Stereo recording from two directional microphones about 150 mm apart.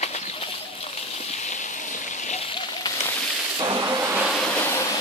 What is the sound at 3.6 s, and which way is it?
Vehicle, 25° right (ahead or behind).